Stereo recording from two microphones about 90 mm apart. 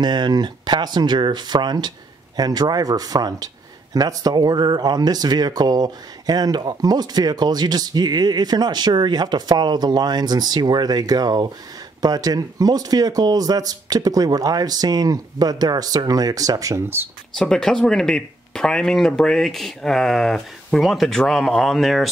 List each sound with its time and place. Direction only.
0.0 s speech: 55° right (ahead or behind)
17.4 s speech: 5° left (ahead or behind)